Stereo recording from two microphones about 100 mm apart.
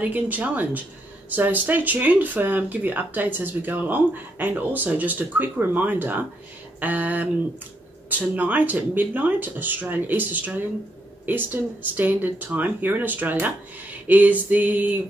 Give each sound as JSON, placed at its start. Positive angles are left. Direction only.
{"t": 0.0, "sound": "speech", "side_deg": -15}